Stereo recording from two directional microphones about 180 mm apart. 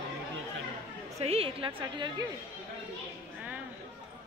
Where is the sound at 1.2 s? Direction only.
35° right (ahead or behind).